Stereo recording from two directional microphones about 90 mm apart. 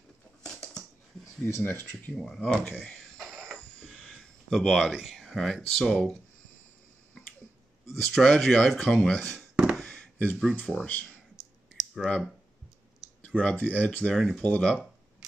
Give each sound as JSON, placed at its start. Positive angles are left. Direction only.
{"t": 1.4, "sound": "speech", "side_deg": 25}
{"t": 2.1, "sound": "speech", "side_deg": 5}
{"t": 2.8, "sound": "a sound", "side_deg": 5}
{"t": 5.0, "sound": "speech", "side_deg": 0}
{"t": 8.0, "sound": "speech", "side_deg": 5}
{"t": 9.8, "sound": "a sound", "side_deg": 10}
{"t": 10.8, "sound": "speech", "side_deg": 20}
{"t": 11.7, "sound": "clicking", "side_deg": 0}
{"t": 13.4, "sound": "speech", "side_deg": 15}